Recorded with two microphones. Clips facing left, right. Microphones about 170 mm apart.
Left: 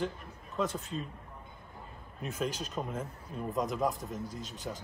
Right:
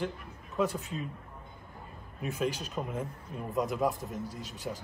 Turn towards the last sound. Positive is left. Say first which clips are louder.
# right 1 dB
turn(degrees=0)  # may be behind; listen again after turning